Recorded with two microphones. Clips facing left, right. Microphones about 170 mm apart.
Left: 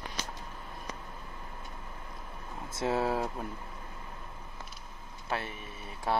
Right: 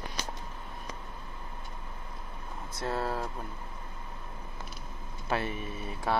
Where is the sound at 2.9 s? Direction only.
10° left (ahead or behind).